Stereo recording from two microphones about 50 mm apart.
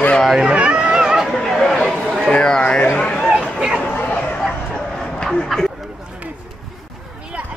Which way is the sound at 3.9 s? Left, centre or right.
Left.